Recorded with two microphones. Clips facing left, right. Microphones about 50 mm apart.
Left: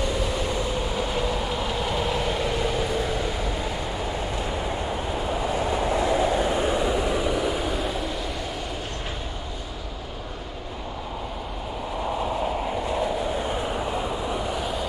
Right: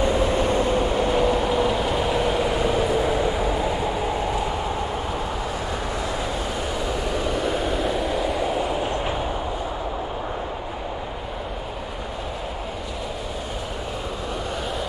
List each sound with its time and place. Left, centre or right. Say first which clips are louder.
0.0 s vehicle: right 6 dB; right
0.9 s vehicle: right 6 dB; centre
6.5 s vehicle: left 3 dB; left; by 8.5 s centre